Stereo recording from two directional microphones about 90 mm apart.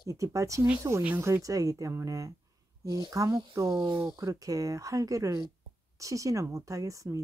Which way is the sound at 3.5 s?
50° right (ahead or behind).